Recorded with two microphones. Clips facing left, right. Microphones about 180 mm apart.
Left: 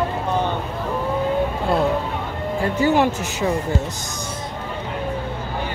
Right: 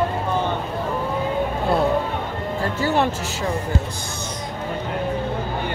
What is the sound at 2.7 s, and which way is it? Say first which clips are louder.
Speech: left 4 dB; 15° left (ahead or behind).